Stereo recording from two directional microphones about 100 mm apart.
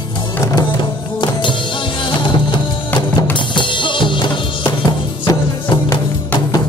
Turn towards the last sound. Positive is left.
turn(degrees=55)  # may be behind; listen again after turning